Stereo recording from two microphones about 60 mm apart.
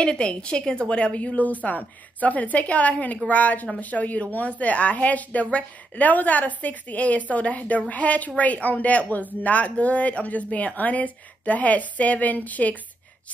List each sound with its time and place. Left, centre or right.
0.0 s speech: centre